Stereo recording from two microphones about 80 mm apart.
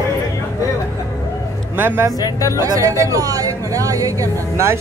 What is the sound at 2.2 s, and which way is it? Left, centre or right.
Speech, left.